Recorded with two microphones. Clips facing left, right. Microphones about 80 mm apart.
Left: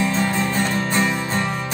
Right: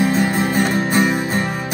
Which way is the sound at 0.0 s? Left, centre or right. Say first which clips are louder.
Right 4 dB; right.